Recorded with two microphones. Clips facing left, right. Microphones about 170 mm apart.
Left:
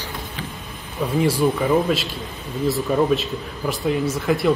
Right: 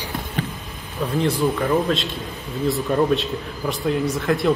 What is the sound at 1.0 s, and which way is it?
Speech, 5° left (ahead or behind).